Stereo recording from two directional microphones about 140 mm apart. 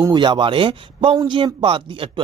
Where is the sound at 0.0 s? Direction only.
35° right (ahead or behind).